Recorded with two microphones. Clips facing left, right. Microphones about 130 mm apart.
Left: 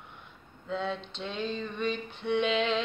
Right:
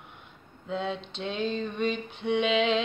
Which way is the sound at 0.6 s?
20° right (ahead or behind).